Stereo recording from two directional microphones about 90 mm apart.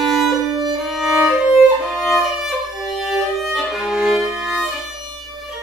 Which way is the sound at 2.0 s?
5° right (ahead or behind).